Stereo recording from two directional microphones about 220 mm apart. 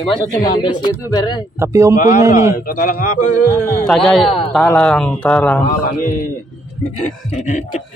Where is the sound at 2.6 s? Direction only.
40° left (ahead or behind).